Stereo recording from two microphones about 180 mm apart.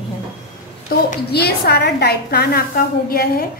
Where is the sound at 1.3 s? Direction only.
65° left (ahead or behind).